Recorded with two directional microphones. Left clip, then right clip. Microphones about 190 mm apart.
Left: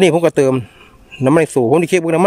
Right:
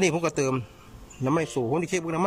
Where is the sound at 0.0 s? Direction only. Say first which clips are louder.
Left 13 dB; 45° left (ahead or behind).